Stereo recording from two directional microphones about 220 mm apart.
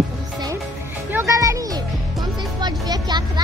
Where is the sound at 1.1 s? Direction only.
10° right (ahead or behind).